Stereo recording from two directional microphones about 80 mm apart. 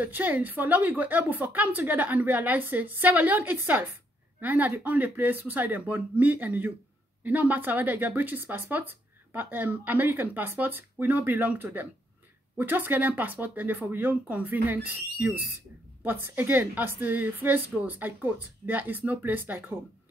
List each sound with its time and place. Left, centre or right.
0.0 s speech: right